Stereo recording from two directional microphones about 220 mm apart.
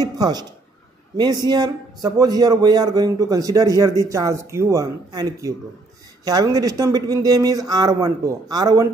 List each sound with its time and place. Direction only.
0.0 s a man's voice: 20° right (ahead or behind)